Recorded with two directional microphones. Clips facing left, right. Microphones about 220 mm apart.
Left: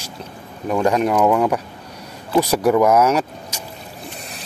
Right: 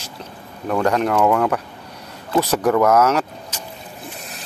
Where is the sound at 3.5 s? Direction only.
10° left (ahead or behind).